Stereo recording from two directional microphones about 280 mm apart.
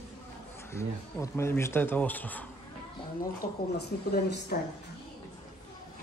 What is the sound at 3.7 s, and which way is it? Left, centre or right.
Speech, left.